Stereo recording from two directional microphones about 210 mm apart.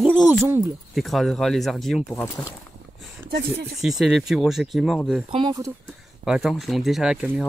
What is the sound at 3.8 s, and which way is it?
Speech, centre (ahead or behind).